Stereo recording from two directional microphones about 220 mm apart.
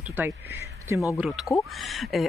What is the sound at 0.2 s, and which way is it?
Speech, 10° right (ahead or behind).